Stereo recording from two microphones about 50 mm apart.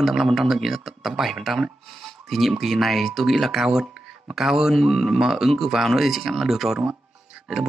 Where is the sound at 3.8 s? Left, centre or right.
Centre.